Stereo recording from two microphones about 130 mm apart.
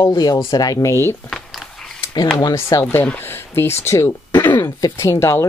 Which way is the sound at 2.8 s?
10° left (ahead or behind).